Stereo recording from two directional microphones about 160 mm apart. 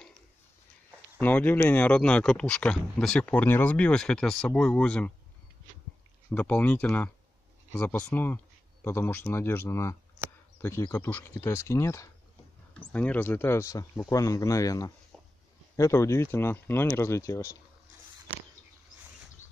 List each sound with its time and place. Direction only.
1.2 s speech: 10° left (ahead or behind)
6.3 s speech: 10° left (ahead or behind)